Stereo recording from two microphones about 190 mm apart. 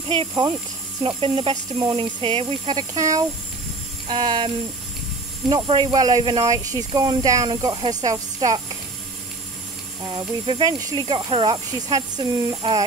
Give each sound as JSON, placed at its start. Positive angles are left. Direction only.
{"t": 0.3, "sound": "speech", "side_deg": -20}
{"t": 5.5, "sound": "speech", "side_deg": -20}
{"t": 10.1, "sound": "speech", "side_deg": -25}